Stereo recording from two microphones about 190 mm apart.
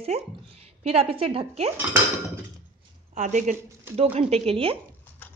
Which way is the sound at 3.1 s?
40° right (ahead or behind).